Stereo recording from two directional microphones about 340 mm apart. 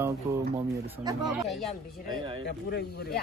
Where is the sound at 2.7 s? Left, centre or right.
Left.